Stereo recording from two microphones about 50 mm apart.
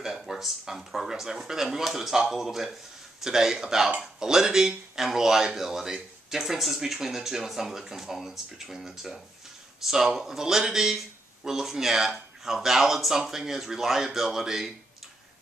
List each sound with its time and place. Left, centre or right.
0.0 s speech: centre